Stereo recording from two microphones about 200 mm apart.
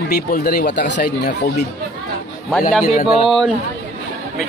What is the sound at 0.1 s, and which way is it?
Speech, 50° left (ahead or behind).